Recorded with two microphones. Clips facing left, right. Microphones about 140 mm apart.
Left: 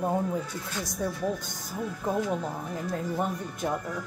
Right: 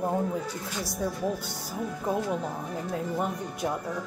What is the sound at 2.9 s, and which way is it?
Speech, centre (ahead or behind).